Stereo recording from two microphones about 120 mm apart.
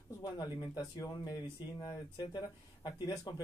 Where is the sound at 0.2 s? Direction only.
30° left (ahead or behind).